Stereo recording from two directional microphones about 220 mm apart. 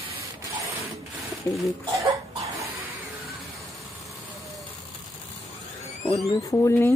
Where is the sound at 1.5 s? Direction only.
10° left (ahead or behind).